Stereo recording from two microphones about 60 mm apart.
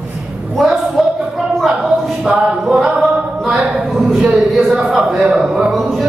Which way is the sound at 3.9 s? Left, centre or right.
Centre.